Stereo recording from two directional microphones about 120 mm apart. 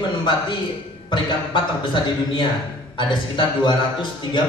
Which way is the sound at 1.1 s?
40° left (ahead or behind).